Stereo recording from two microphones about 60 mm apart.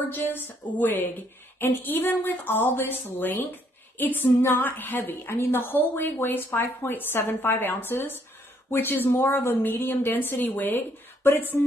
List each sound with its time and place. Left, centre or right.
0.1 s a woman's voice: left